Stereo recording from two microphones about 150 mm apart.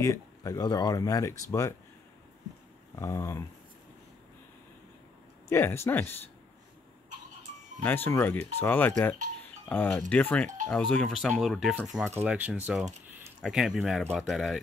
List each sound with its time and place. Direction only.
0.0 s speech: 20° left (ahead or behind)
3.0 s speech: 20° left (ahead or behind)
5.5 s speech: 15° left (ahead or behind)
7.8 s speech: 15° left (ahead or behind); by 14.6 s centre (ahead or behind)